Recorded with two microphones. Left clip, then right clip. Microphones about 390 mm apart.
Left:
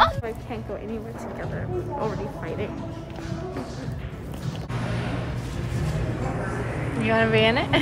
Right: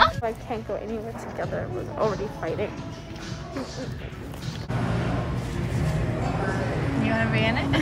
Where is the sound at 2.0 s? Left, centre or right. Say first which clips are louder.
Right 3 dB; centre.